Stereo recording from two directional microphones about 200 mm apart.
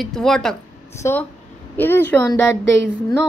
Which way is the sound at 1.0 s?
15° left (ahead or behind).